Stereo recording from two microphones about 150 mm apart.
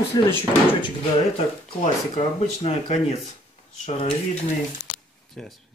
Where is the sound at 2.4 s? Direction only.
45° left (ahead or behind).